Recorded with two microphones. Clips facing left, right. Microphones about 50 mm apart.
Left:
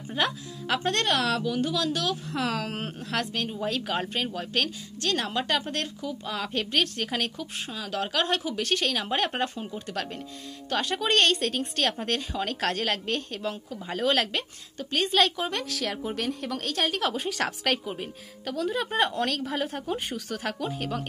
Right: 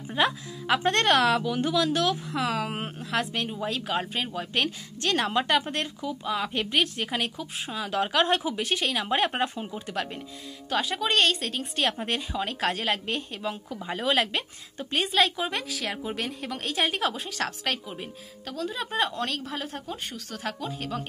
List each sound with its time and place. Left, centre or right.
0.2 s speech: centre
0.8 s a woman's voice: right
2.3 s speech: centre
4.6 s a woman's voice: right; by 7.7 s centre
7.7 s speech: right
10.7 s speech: centre
14.8 s a woman's voice: right
15.0 s speech: centre
17.0 s speech: centre